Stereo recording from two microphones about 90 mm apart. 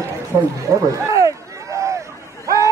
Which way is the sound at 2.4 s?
35° right (ahead or behind).